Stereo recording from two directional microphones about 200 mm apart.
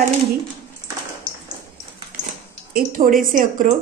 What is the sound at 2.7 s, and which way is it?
Speech, 45° right (ahead or behind).